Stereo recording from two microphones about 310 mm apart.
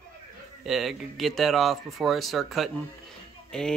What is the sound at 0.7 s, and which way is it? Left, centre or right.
Speech, centre.